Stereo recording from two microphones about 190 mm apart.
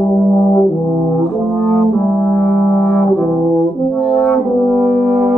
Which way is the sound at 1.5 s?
10° left (ahead or behind).